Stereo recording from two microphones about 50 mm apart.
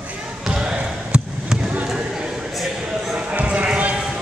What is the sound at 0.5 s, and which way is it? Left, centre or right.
Basketball bounce, centre.